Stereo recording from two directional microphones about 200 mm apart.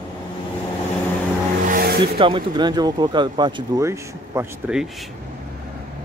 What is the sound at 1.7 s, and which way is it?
Vehicle, 50° right (ahead or behind).